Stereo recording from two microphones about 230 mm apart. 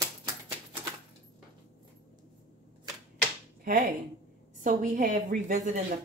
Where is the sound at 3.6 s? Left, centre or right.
Right.